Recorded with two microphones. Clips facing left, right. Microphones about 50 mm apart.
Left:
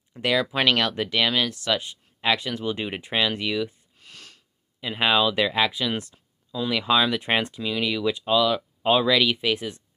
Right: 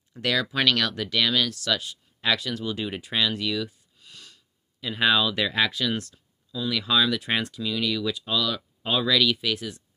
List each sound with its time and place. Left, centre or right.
0.1 s speech: centre
4.0 s wheeze: left
4.7 s speech: left